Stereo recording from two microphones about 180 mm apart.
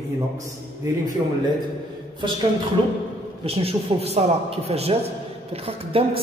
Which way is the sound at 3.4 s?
35° right (ahead or behind).